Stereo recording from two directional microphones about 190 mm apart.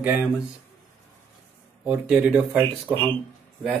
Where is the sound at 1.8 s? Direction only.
5° right (ahead or behind).